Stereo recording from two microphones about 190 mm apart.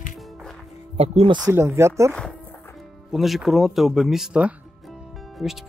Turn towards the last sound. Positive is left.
turn(degrees=0)  # may be behind; listen again after turning